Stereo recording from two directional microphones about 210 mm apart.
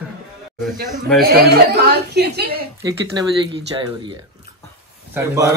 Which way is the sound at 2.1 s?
50° right (ahead or behind).